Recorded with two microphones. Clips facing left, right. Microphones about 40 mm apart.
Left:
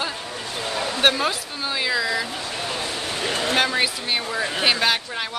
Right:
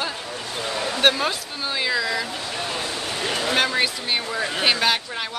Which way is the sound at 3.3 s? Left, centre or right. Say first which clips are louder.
Even; left.